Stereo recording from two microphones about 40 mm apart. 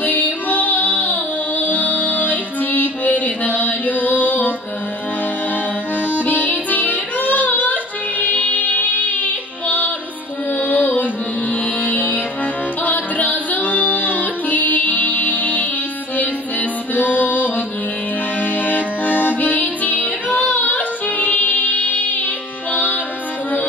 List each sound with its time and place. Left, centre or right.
0.0 s music: left
6.0 s music: left